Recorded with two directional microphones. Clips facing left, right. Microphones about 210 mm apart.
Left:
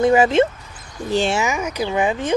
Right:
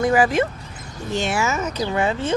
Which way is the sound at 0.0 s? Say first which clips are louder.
Left 4 dB; 25° left (ahead or behind).